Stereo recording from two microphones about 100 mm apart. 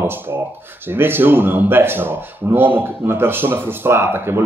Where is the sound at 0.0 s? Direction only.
20° right (ahead or behind).